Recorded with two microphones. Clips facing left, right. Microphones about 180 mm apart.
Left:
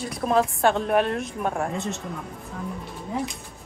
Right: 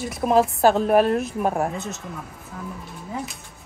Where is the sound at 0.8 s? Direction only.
40° right (ahead or behind).